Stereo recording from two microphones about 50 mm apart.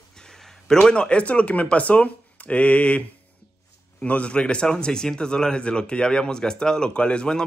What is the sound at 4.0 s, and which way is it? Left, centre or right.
A man's voice, left.